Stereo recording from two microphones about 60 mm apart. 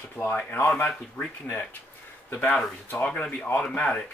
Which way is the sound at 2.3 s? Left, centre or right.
Left.